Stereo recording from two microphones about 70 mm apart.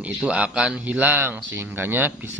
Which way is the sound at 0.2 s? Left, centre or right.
Centre.